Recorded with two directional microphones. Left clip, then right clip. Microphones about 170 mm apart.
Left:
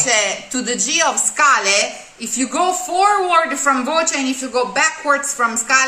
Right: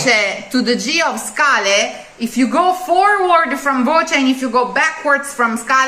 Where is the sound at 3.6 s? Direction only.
5° left (ahead or behind).